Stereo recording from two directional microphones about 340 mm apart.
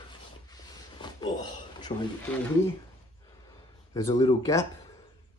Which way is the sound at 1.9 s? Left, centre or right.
Centre.